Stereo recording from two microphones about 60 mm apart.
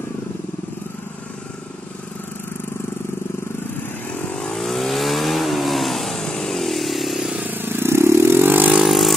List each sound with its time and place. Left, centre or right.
4.1 s vehicle: left
4.4 s vehicle: centre
7.3 s vehicle: right
8.8 s vehicle: centre